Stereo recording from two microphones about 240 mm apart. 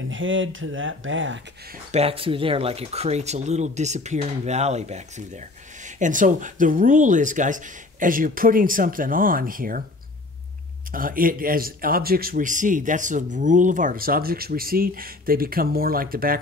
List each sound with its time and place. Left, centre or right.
0.1 s speech: right
1.9 s speech: right
10.9 s speech: right